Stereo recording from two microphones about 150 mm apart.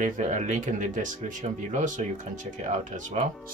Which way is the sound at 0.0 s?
55° right (ahead or behind).